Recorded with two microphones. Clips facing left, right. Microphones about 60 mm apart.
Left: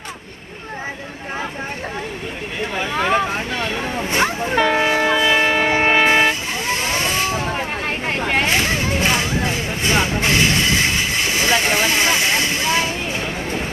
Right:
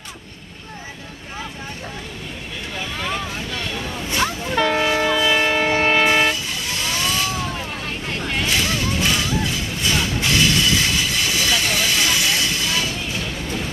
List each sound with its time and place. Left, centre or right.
2.8 s vehicle: left
3.5 s a sound: left
4.6 s train: centre